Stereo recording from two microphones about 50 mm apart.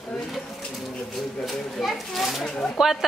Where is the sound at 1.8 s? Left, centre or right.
Centre.